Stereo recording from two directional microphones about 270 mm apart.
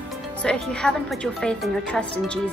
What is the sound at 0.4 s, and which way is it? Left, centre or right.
A woman's voice, centre.